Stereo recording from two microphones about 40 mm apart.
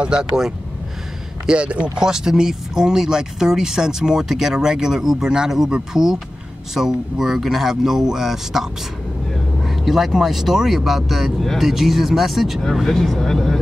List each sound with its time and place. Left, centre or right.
0.0 s speech: right
1.4 s speech: right
2.0 s speech: centre